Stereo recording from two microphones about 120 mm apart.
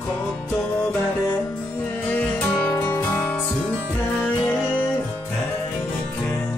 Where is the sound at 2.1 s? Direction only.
15° left (ahead or behind).